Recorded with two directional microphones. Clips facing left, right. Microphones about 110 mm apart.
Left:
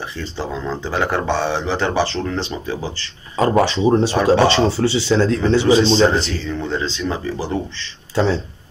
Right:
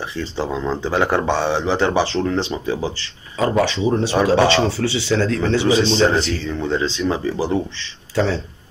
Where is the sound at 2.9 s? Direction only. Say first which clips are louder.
Even; 40° left (ahead or behind).